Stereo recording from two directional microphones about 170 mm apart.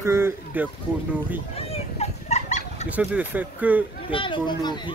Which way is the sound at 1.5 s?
35° left (ahead or behind).